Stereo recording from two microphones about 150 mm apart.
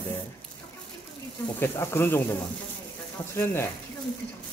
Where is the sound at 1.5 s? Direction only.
15° left (ahead or behind).